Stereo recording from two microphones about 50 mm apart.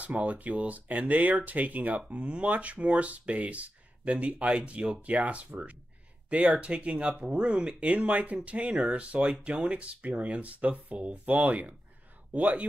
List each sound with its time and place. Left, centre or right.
0.0 s speech: right